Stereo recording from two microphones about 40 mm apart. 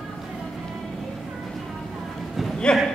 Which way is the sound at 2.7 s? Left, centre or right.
Centre.